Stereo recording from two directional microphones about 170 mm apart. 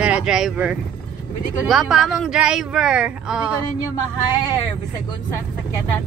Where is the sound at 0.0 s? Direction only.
5° right (ahead or behind).